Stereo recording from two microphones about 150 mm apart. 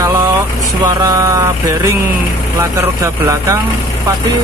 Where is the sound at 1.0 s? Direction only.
20° right (ahead or behind).